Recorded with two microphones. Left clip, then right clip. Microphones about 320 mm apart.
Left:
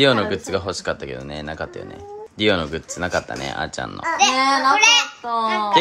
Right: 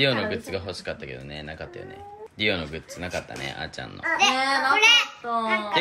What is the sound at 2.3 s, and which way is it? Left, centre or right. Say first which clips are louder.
Speech: left 6 dB; centre.